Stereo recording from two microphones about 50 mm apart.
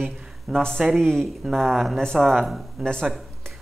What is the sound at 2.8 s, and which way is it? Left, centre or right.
Speech, centre.